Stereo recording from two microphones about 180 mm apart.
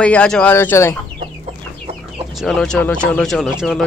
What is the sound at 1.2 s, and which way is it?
Chicken, 35° right (ahead or behind).